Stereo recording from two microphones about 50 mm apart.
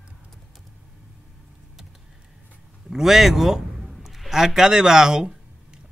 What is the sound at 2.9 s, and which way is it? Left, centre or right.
A man's voice, centre.